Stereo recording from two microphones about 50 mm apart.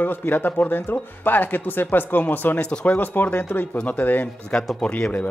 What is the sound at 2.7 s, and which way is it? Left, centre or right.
Speech, centre.